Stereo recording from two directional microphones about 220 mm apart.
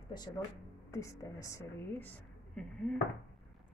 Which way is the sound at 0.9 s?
15° left (ahead or behind).